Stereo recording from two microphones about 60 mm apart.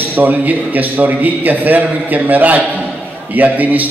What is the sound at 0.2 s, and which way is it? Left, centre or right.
A man's voice, right.